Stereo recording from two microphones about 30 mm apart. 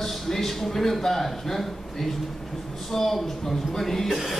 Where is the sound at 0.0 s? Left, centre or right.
Centre.